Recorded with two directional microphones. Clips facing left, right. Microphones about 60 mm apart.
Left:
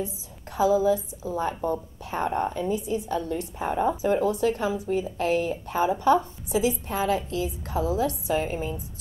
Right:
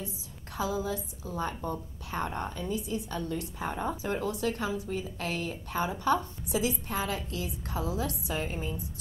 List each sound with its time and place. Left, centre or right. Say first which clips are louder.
0.0 s a woman's voice: left 8 dB; centre